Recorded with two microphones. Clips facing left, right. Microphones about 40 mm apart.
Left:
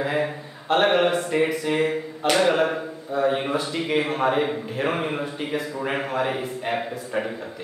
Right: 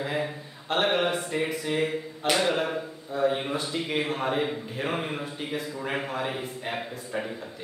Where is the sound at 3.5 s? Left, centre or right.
Centre.